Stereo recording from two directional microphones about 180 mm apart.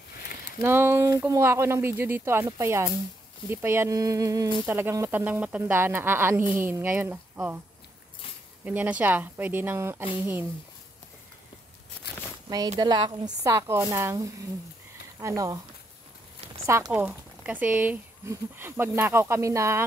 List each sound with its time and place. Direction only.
0.6 s speech: 15° right (ahead or behind)
8.6 s speech: 10° right (ahead or behind)
12.7 s a woman's voice: 25° right (ahead or behind)
16.6 s speech: 15° right (ahead or behind)